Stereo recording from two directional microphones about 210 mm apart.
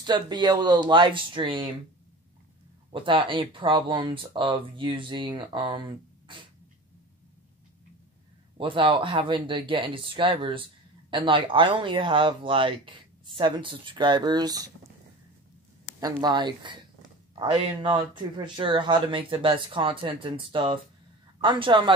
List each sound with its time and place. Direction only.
0.0 s speech: 20° right (ahead or behind)
2.9 s speech: 25° right (ahead or behind)
8.5 s speech: 25° right (ahead or behind)
16.0 s speech: 20° right (ahead or behind)